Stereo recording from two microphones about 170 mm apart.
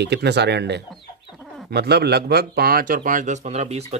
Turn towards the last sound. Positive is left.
turn(degrees=-40)  # may be behind; listen again after turning